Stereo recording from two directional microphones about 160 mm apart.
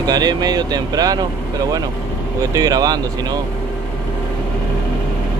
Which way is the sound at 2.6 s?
25° right (ahead or behind).